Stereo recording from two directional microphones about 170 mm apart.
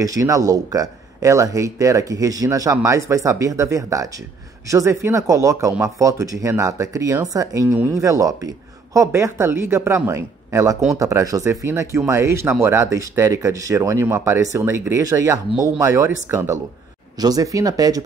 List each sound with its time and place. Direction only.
0.0 s speech: 20° right (ahead or behind)